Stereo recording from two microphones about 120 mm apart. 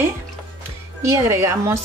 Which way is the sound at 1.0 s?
25° right (ahead or behind).